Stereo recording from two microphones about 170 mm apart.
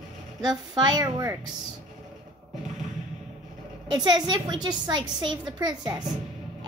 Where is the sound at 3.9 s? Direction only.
25° right (ahead or behind).